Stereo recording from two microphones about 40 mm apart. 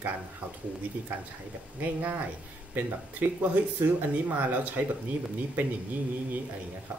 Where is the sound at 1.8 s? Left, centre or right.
Right.